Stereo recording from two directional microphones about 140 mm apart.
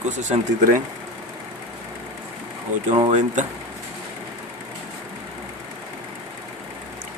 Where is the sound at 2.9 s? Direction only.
50° right (ahead or behind).